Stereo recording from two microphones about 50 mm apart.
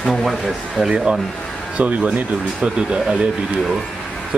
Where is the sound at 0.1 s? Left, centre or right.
Centre.